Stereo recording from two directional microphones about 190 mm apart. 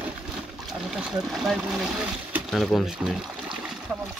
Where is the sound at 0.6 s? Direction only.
5° right (ahead or behind).